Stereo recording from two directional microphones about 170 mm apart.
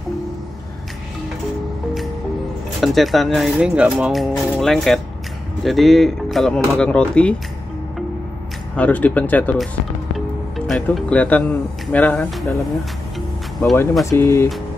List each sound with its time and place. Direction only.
2.8 s speech: centre (ahead or behind)
8.7 s speech: 10° left (ahead or behind)
10.7 s speech: 5° left (ahead or behind)
14.1 s speech: 15° left (ahead or behind)